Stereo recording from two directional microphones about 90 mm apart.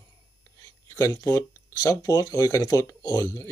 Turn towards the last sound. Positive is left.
turn(degrees=40)  # may be behind; listen again after turning